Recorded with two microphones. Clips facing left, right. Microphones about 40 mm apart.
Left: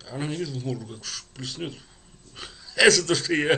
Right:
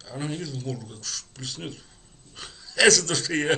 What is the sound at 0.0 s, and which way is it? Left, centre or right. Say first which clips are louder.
Speech: left 2 dB; centre.